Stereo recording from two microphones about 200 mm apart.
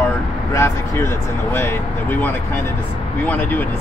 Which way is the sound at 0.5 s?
10° left (ahead or behind).